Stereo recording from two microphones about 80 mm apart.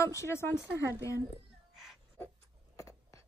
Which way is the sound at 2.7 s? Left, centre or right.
Left.